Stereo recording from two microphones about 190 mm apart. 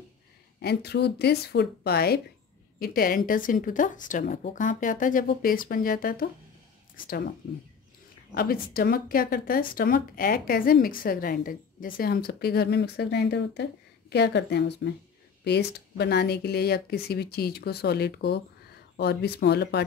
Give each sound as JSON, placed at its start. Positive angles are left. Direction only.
{"t": 0.6, "sound": "speech", "side_deg": 60}
{"t": 8.4, "sound": "speech", "side_deg": 50}